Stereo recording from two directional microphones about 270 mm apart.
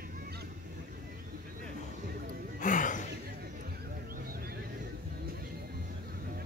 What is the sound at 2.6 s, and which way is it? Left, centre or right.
Gasp, left.